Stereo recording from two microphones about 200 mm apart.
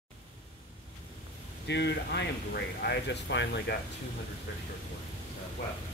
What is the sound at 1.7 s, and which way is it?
Speech, 60° left (ahead or behind).